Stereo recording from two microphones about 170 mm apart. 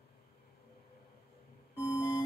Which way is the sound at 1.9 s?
20° left (ahead or behind).